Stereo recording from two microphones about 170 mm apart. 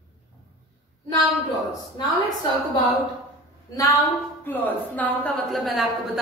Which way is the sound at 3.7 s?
20° left (ahead or behind).